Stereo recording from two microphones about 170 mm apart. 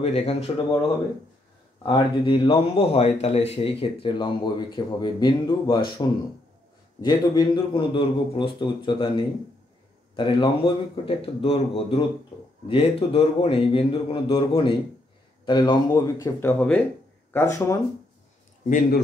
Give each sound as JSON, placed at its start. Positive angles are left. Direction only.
{"t": 0.0, "sound": "a man's voice", "side_deg": 35}
{"t": 1.8, "sound": "a man's voice", "side_deg": 25}